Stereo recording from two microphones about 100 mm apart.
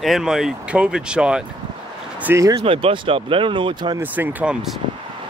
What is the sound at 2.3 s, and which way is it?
Speech, 35° right (ahead or behind).